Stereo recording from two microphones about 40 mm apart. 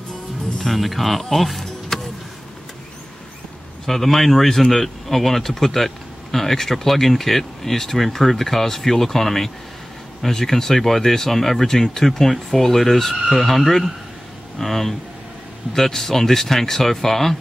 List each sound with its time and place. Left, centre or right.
0.6 s speech: centre
1.9 s vehicle: centre
3.8 s speech: centre